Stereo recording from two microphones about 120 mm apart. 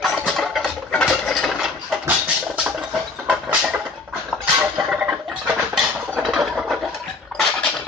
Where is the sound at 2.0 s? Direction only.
10° right (ahead or behind).